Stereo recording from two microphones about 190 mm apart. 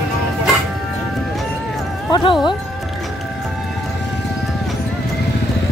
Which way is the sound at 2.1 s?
25° left (ahead or behind).